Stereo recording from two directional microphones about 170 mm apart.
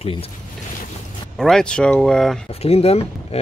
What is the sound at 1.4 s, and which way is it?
Speech, 5° left (ahead or behind).